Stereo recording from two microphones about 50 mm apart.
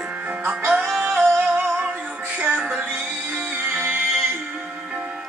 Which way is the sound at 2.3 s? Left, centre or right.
Right.